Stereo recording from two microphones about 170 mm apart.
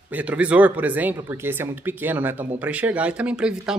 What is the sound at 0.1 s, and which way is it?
Speech, 10° right (ahead or behind).